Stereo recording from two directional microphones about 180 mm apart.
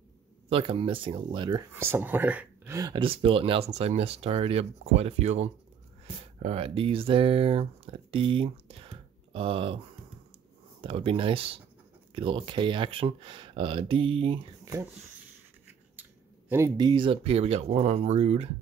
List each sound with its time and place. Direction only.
0.5 s speech: 30° right (ahead or behind)
1.8 s speech: 10° right (ahead or behind); by 9.8 s 30° right (ahead or behind)
10.8 s speech: 30° right (ahead or behind)
14.6 s a sound: 15° right (ahead or behind)
16.0 s speech: 10° right (ahead or behind); by 18.5 s 35° right (ahead or behind)